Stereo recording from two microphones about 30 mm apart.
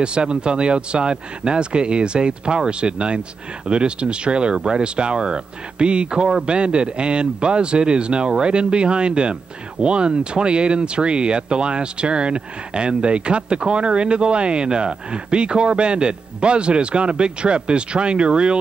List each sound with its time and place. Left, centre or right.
0.0 s a man's voice: right